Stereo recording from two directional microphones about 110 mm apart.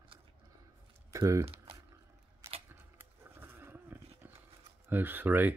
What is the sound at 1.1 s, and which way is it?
Speech, 30° right (ahead or behind).